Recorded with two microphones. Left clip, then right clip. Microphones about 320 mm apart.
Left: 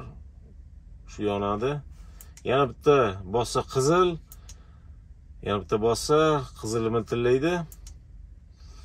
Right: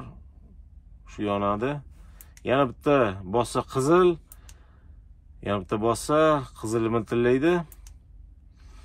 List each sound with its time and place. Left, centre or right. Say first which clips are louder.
1.0 s a man's voice: right 1 dB; right
2.8 s speech: left 1 dB; right
5.5 s speech: left 1 dB; right